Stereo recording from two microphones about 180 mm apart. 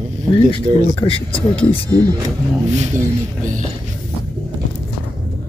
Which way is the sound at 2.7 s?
40° right (ahead or behind).